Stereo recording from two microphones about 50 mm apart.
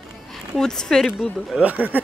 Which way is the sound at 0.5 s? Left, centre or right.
Centre.